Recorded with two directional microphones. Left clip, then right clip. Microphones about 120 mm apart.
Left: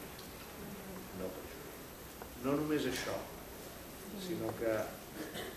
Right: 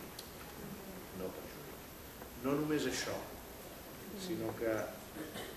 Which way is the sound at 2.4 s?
10° right (ahead or behind).